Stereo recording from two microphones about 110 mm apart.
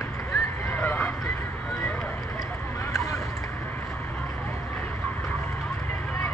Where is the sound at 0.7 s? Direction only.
15° left (ahead or behind).